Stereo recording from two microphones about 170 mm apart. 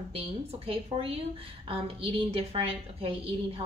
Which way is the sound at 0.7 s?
35° right (ahead or behind).